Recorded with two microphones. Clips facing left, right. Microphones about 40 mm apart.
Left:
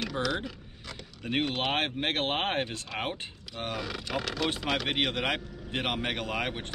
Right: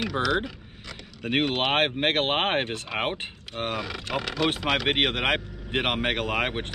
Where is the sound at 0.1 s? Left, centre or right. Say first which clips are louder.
Right 6 dB; right.